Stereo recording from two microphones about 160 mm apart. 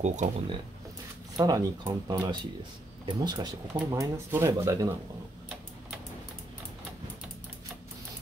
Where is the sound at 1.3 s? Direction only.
25° right (ahead or behind).